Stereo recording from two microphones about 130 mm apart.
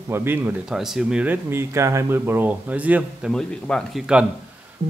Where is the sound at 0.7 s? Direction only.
5° right (ahead or behind).